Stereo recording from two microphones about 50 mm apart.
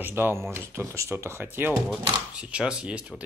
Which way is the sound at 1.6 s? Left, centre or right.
Right.